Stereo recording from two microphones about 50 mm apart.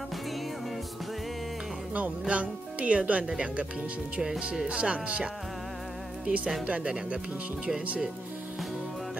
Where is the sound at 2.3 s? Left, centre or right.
Right.